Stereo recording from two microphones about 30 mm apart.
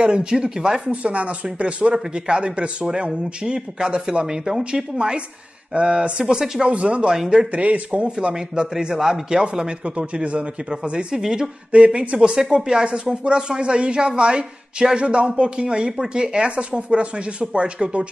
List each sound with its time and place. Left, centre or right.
0.0 s speech: right
0.6 s a man's voice: right
1.0 s speech: right
4.3 s a man's voice: centre
4.6 s speech: right
8.7 s a man's voice: right
9.9 s speech: right
11.1 s a man's voice: right
11.7 s speech: right
12.2 s a man's voice: right